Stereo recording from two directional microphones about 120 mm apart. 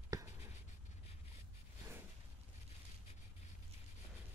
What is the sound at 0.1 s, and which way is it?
Writing, 30° right (ahead or behind).